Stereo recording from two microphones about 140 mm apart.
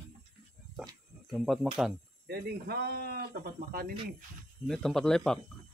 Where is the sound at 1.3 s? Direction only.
Centre (ahead or behind).